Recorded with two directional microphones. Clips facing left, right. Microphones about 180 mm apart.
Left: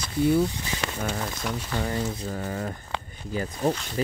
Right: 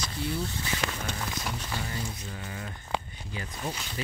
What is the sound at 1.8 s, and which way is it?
Speech, 50° left (ahead or behind).